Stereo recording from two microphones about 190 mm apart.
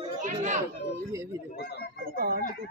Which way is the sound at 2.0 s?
50° right (ahead or behind).